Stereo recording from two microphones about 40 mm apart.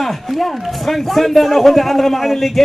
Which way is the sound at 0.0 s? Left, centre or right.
Centre.